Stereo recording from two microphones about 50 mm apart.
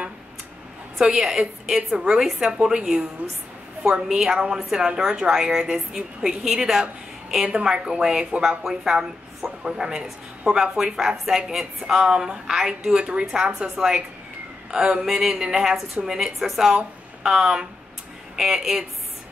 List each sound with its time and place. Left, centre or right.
0.9 s a woman's voice: centre
7.4 s a woman's voice: centre
12.0 s a woman's voice: centre
13.3 s a woman's voice: centre